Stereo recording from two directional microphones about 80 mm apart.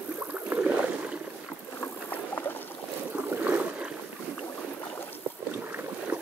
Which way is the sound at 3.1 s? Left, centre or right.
Right.